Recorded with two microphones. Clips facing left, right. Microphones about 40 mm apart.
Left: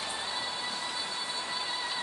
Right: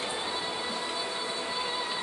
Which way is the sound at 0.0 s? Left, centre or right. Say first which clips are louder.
Right 3 dB; right.